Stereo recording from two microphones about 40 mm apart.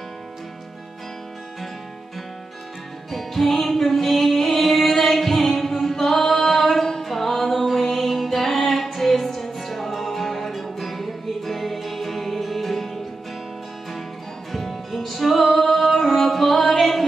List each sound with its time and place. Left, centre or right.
3.1 s music: centre
14.5 s music: centre